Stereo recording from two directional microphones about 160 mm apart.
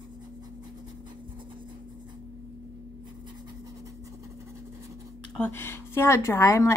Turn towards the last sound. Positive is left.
turn(degrees=20)  # may be behind; listen again after turning